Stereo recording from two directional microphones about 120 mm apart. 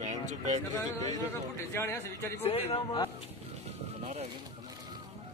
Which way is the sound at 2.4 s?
60° left (ahead or behind).